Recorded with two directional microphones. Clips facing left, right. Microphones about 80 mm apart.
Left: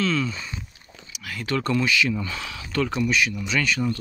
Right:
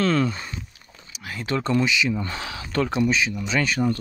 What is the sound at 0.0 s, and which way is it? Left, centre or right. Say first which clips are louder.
Speech: right 3 dB; right.